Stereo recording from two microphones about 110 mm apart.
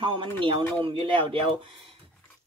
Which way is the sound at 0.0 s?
50° right (ahead or behind).